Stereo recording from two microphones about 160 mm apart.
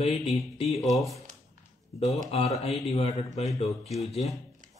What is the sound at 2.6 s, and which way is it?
Speech, 40° left (ahead or behind).